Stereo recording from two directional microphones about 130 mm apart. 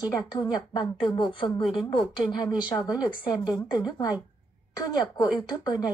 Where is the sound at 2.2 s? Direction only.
35° left (ahead or behind).